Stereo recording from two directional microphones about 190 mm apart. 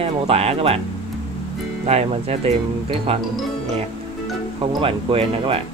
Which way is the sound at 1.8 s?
35° right (ahead or behind).